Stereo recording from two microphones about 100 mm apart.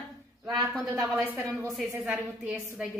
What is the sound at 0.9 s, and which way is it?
Speech, 35° right (ahead or behind).